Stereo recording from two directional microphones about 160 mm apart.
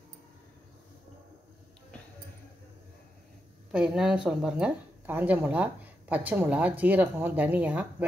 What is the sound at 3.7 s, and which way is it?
Speech, 5° right (ahead or behind).